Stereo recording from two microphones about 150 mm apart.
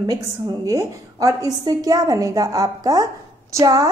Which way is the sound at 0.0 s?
25° right (ahead or behind).